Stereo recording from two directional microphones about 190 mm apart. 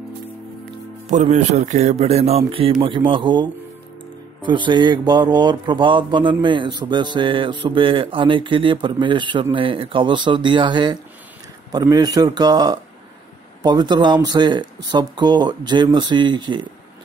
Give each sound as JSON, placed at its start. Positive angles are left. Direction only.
{"t": 1.0, "sound": "speech", "side_deg": -35}
{"t": 4.5, "sound": "speech", "side_deg": -25}